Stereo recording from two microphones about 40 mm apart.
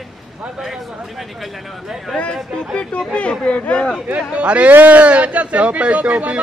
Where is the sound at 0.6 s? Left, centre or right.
Centre.